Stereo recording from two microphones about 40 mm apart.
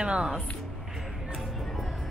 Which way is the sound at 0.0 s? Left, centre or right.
Right.